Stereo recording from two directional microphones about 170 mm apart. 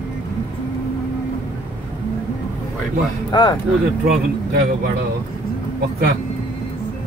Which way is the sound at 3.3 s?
25° left (ahead or behind).